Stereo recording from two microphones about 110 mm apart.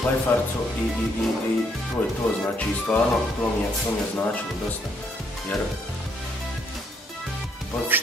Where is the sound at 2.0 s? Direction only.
15° left (ahead or behind).